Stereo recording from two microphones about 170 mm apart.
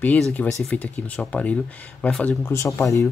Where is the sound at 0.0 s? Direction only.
10° left (ahead or behind).